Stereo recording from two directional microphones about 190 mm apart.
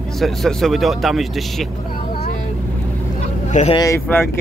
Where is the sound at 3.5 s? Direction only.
40° left (ahead or behind).